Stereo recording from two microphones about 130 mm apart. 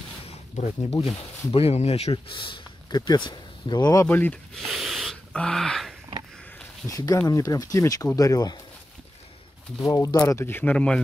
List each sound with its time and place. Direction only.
0.3 s a sound: 50° left (ahead or behind)
1.5 s speech: 50° left (ahead or behind); by 4.1 s 30° left (ahead or behind)
4.1 s speech: 15° left (ahead or behind)
4.6 s a sound: centre (ahead or behind)
6.9 s speech: 25° left (ahead or behind)
9.8 s speech: 25° left (ahead or behind); by 11.0 s 10° left (ahead or behind)